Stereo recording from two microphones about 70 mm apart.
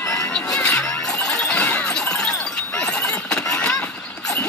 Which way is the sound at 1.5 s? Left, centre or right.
Centre.